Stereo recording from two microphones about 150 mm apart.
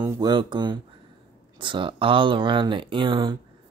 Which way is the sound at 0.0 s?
25° right (ahead or behind).